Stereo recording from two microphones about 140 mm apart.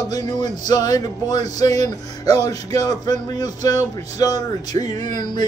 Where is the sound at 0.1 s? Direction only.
30° left (ahead or behind).